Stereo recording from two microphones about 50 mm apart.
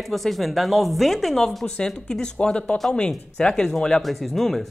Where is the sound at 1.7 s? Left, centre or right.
Centre.